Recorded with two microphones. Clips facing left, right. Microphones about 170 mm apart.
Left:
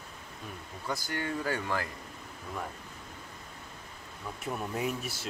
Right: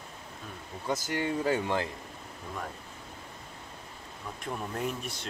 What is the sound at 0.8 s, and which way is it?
Speech, 20° right (ahead or behind).